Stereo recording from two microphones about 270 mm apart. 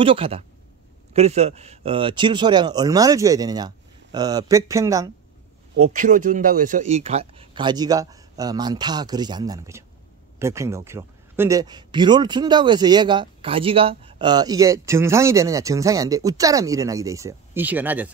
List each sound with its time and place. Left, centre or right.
0.0 s a man's voice: centre
5.8 s a man's voice: right; by 18.1 s centre